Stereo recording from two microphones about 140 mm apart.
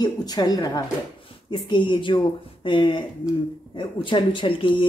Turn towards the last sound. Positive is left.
turn(degrees=35)  # may be behind; listen again after turning